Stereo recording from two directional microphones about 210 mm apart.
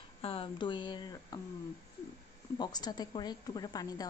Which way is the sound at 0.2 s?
25° left (ahead or behind).